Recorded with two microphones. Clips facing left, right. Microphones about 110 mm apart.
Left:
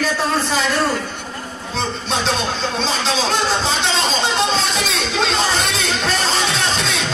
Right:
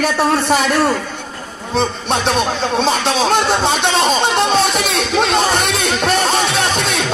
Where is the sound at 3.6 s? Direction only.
60° right (ahead or behind).